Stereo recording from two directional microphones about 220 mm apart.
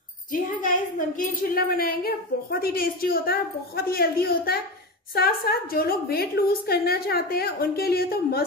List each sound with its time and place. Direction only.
0.3 s a woman's voice: 35° left (ahead or behind)